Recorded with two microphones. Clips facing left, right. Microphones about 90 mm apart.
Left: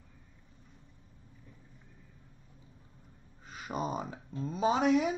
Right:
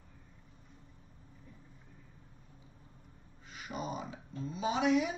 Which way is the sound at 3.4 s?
40° left (ahead or behind).